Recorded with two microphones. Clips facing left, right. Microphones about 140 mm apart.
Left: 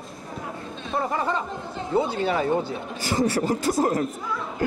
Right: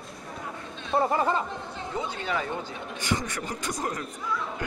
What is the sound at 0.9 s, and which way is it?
Speech, 25° right (ahead or behind).